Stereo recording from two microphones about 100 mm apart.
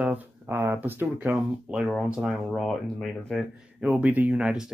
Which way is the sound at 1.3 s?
5° right (ahead or behind).